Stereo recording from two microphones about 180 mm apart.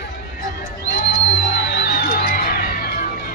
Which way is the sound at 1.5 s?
60° left (ahead or behind).